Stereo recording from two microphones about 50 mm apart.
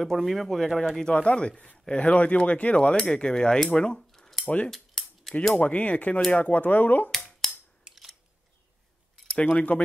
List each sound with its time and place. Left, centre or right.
0.0 s speech: centre
1.0 s speech: left
4.1 s a sound: centre
5.6 s speech: left
7.4 s scissors: centre
7.9 s scissors: centre
9.3 s speech: left